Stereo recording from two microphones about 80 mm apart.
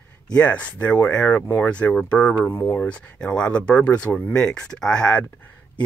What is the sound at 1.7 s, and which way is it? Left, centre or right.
Speech, centre.